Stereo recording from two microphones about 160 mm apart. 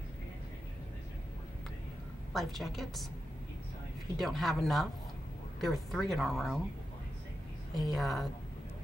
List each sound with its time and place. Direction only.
2.3 s speech: centre (ahead or behind)
4.2 s speech: centre (ahead or behind)
7.7 s speech: centre (ahead or behind)